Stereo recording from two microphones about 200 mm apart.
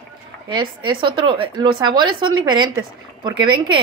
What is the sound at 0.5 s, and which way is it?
A woman's voice, 25° right (ahead or behind).